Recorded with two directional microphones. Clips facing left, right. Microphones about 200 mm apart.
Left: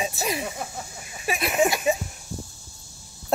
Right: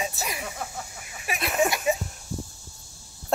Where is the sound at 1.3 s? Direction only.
10° left (ahead or behind).